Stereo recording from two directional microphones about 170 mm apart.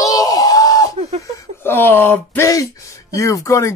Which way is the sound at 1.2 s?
20° left (ahead or behind).